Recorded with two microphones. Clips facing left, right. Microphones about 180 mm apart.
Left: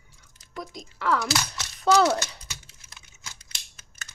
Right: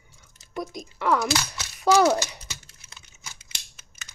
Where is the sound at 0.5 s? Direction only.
20° right (ahead or behind).